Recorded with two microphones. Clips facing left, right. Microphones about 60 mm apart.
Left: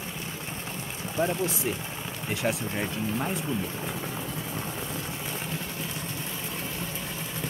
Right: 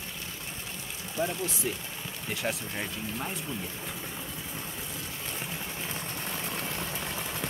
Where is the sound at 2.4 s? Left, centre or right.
Centre.